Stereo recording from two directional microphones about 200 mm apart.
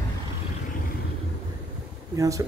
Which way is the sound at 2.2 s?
15° right (ahead or behind).